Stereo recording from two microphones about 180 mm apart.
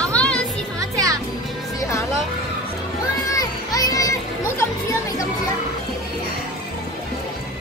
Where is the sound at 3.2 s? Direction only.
20° left (ahead or behind).